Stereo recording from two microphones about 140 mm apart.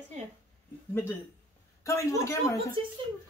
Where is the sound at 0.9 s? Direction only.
15° left (ahead or behind).